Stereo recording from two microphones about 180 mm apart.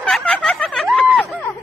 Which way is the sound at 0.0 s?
5° left (ahead or behind).